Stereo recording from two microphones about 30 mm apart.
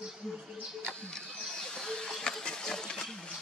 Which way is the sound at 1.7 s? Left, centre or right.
Left.